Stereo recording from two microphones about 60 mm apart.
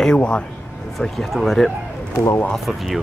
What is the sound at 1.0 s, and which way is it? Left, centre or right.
Speech, centre.